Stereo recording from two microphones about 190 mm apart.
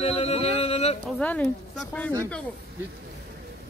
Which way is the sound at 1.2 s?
5° left (ahead or behind).